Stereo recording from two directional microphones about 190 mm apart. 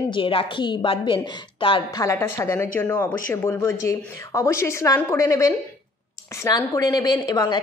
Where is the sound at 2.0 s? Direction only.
15° left (ahead or behind).